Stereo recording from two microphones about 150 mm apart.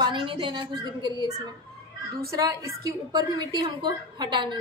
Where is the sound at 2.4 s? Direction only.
20° right (ahead or behind).